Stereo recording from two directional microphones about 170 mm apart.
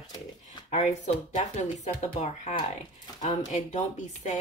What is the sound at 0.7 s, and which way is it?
A woman's voice, 45° left (ahead or behind).